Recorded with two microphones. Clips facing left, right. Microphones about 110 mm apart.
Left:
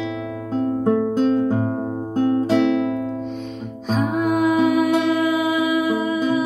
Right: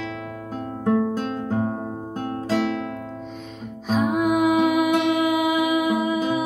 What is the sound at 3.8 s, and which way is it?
Music, 5° right (ahead or behind).